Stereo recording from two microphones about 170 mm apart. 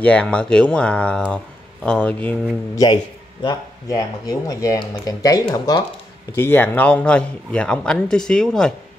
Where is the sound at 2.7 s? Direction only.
25° left (ahead or behind).